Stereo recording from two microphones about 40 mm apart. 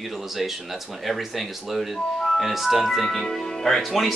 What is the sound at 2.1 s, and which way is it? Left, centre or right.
Music, centre.